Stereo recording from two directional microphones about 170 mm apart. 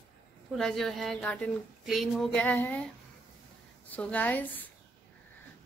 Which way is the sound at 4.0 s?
10° left (ahead or behind).